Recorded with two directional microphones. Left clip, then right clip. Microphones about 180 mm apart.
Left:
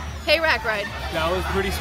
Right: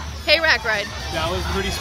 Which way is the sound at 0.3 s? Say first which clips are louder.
Right 3 dB; centre (ahead or behind).